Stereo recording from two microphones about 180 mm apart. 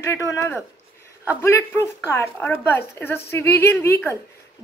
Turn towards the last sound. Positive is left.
turn(degrees=15)  # may be behind; listen again after turning